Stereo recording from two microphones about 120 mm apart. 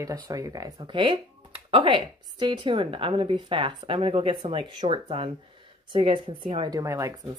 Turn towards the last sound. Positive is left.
turn(degrees=-25)  # may be behind; listen again after turning